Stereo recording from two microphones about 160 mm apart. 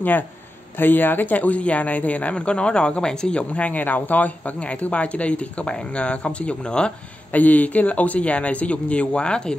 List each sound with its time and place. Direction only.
0.7 s speech: 10° left (ahead or behind)